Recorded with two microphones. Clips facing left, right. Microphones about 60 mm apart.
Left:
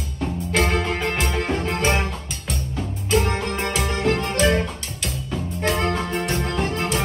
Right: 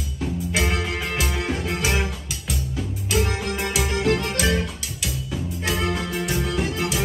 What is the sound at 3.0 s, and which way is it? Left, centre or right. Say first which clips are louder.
Music: left 3 dB; centre.